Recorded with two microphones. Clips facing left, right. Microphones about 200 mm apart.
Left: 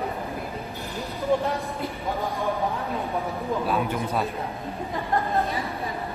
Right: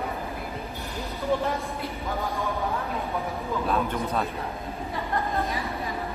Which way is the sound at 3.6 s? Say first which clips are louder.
Right 1 dB; 5° left (ahead or behind).